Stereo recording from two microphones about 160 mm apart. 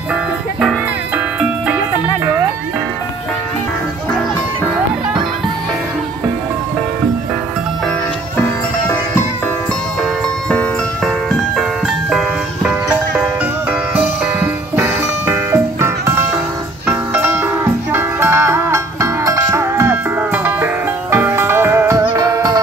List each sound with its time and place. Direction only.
0.1 s music: 5° right (ahead or behind)
8.8 s music: 15° left (ahead or behind)
13.7 s music: 10° right (ahead or behind)